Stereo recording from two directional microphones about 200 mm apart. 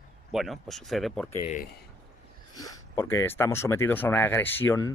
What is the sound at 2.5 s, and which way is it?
Speech, 20° left (ahead or behind).